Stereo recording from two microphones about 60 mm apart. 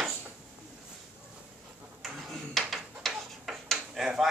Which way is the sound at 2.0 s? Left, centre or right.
Centre.